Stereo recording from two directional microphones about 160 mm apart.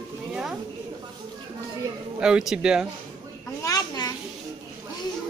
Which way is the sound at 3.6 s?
25° left (ahead or behind).